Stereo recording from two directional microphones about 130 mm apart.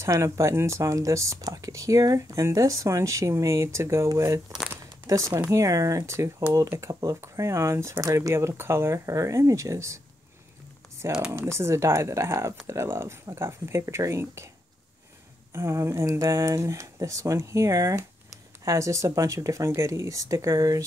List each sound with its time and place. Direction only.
0.0 s speech: 20° right (ahead or behind)
11.1 s speech: 10° right (ahead or behind)
11.3 s speech: 20° right (ahead or behind)
15.5 s speech: 20° right (ahead or behind)